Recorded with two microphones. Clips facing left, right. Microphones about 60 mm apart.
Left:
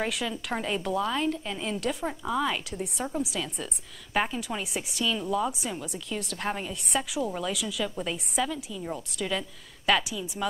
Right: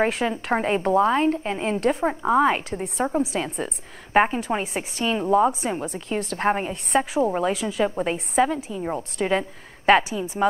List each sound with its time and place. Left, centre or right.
0.0 s a woman's voice: right